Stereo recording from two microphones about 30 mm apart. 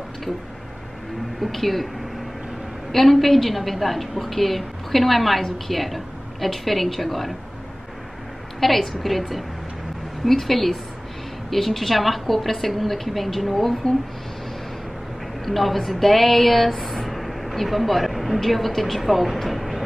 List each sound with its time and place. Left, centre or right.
1.4 s a woman's voice: centre
2.9 s a woman's voice: centre
8.5 s a woman's voice: centre
10.2 s a woman's voice: centre
15.4 s speech: centre